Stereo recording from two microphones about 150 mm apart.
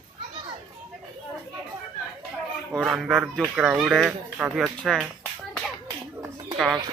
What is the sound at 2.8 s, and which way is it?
Speech, 5° right (ahead or behind).